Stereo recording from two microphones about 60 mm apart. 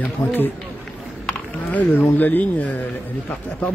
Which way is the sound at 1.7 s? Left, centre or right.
Left.